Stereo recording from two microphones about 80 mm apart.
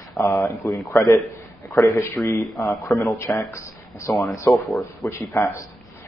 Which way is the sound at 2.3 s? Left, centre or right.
Left.